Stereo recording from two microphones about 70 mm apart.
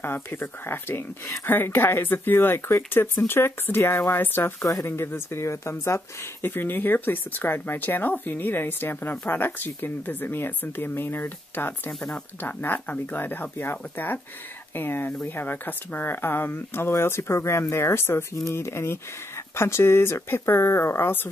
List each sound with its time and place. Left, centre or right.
0.0 s speech: left
4.6 s speech: left
11.9 s speech: centre
12.4 s speech: left